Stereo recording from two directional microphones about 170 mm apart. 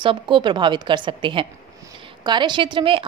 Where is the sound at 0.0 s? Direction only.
30° right (ahead or behind).